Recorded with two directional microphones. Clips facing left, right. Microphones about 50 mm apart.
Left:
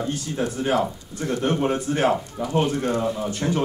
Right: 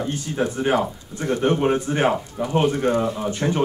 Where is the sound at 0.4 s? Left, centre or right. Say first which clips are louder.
Right 2 dB; right.